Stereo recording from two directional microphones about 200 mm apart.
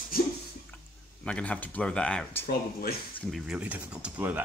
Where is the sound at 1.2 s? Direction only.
5° left (ahead or behind).